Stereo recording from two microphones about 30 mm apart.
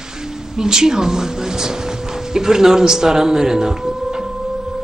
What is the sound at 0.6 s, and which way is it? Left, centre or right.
Speech, right.